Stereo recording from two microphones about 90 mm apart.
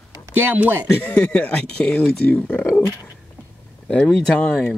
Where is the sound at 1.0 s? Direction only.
15° left (ahead or behind).